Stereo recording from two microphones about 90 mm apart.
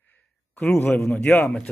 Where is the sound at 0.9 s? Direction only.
5° left (ahead or behind).